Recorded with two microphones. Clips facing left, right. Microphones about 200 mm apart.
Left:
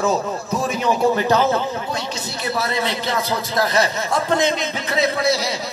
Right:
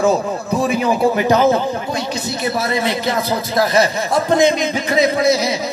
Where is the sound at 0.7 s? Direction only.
5° right (ahead or behind).